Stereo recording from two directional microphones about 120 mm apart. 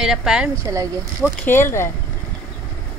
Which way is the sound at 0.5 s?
25° right (ahead or behind).